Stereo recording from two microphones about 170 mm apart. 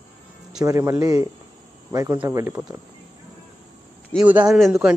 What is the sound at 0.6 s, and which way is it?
Speech, 20° right (ahead or behind).